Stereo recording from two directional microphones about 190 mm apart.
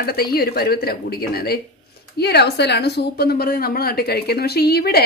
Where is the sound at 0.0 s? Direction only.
55° left (ahead or behind).